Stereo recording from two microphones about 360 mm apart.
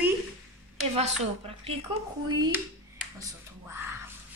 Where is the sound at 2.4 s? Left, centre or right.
Centre.